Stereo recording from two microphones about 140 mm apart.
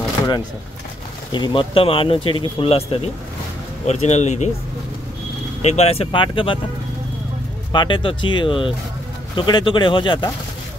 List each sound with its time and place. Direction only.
1.3 s speech: 35° left (ahead or behind); by 4.5 s 55° left (ahead or behind)
5.6 s speech: 50° left (ahead or behind)
7.7 s speech: 35° left (ahead or behind)